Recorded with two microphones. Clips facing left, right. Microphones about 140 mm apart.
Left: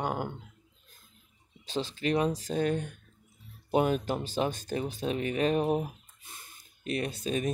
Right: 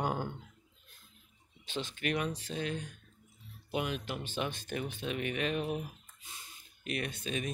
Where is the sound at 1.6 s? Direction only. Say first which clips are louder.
Left 5 dB; 35° left (ahead or behind); by 6.5 s 55° left (ahead or behind).